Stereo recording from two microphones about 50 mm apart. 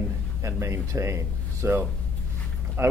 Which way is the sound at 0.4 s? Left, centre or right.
Right.